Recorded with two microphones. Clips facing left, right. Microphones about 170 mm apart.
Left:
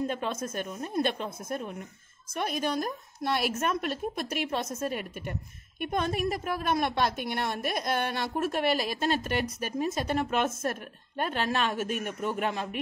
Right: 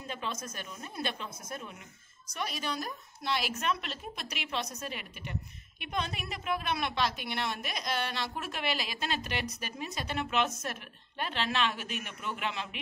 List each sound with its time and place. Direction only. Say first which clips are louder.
0.0 s a woman's voice: left 8 dB; 50° left (ahead or behind)